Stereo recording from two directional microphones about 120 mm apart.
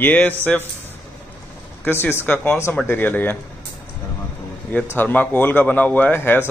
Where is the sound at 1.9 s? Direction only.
20° left (ahead or behind).